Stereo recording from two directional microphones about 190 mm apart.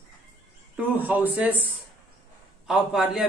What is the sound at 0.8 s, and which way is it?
Speech, 10° right (ahead or behind).